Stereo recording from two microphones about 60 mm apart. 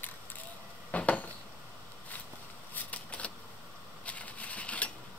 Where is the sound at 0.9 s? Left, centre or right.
Left.